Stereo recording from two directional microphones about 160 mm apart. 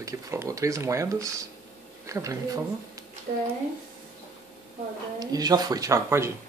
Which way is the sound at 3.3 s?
50° right (ahead or behind).